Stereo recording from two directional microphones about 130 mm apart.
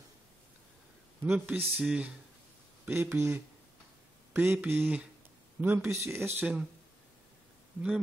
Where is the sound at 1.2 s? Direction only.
15° right (ahead or behind).